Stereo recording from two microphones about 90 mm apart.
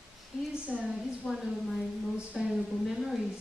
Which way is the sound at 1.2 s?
Centre (ahead or behind).